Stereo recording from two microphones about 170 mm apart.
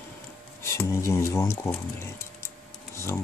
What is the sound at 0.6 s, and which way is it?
Speech, 15° left (ahead or behind).